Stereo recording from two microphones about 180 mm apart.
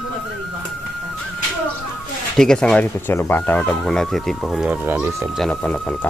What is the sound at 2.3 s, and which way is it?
Speech, 5° left (ahead or behind).